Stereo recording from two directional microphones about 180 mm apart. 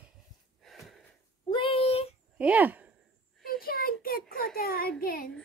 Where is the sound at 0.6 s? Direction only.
Centre (ahead or behind).